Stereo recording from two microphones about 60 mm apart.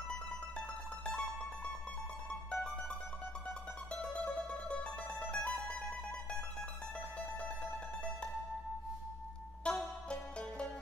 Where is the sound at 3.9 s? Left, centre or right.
Centre.